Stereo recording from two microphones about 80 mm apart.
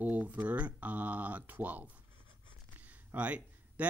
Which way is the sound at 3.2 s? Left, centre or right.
Centre.